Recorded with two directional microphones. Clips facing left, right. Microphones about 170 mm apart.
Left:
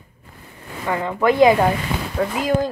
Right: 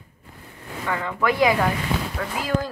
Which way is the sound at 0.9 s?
25° left (ahead or behind).